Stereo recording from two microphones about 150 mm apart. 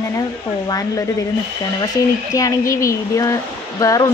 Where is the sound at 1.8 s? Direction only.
25° left (ahead or behind).